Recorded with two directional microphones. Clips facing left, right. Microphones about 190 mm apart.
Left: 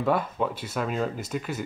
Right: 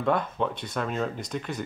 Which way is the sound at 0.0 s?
5° left (ahead or behind).